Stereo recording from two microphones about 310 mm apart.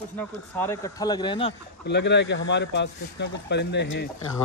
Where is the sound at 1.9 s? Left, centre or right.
Left.